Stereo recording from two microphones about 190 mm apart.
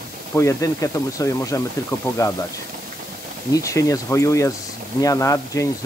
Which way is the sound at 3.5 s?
15° left (ahead or behind).